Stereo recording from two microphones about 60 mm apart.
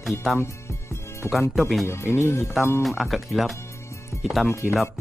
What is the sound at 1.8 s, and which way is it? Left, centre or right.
Speech, left.